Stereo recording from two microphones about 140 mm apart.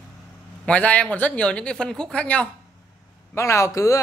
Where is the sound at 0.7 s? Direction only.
10° left (ahead or behind).